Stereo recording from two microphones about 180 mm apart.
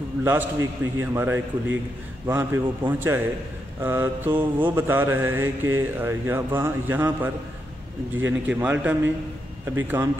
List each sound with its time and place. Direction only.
0.2 s mantra: 15° right (ahead or behind)
4.3 s mantra: 25° right (ahead or behind)
4.6 s mantra: 10° right (ahead or behind)